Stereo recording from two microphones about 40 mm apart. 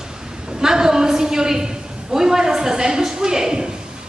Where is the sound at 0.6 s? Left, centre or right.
Centre.